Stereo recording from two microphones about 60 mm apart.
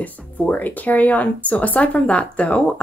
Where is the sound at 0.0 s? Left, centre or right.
Left.